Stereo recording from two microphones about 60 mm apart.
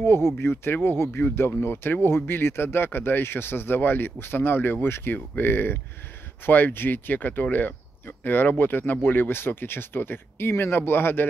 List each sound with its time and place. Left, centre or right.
0.0 s speech: left